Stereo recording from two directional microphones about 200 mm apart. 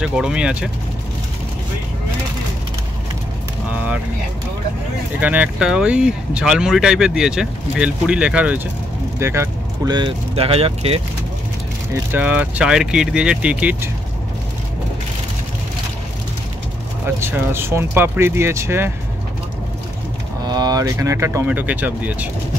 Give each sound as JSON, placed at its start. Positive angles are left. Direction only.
{"t": 0.0, "sound": "speech", "side_deg": -5}
{"t": 5.2, "sound": "speech", "side_deg": -5}
{"t": 11.9, "sound": "speech", "side_deg": -10}
{"t": 17.0, "sound": "speech", "side_deg": -10}
{"t": 20.4, "sound": "speech", "side_deg": -20}